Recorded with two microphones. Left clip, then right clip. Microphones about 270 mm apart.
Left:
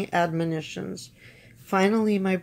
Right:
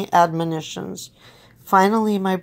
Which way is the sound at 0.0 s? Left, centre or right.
Centre.